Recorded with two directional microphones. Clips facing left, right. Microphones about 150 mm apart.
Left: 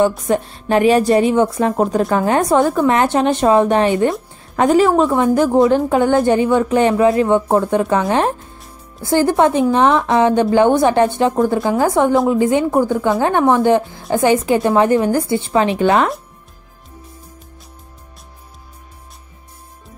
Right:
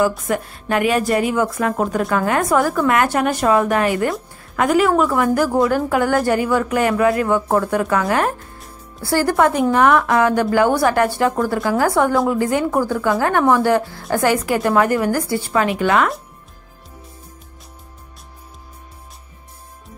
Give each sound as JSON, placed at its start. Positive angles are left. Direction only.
{"t": 0.3, "sound": "a woman's voice", "side_deg": 30}